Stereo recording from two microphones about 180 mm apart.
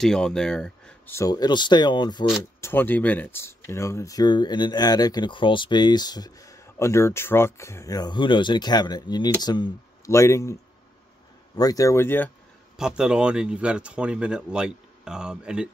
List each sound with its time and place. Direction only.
0.0 s speech: 5° left (ahead or behind); by 2.2 s 25° left (ahead or behind)
2.6 s speech: 10° left (ahead or behind)
12.7 s speech: 5° right (ahead or behind)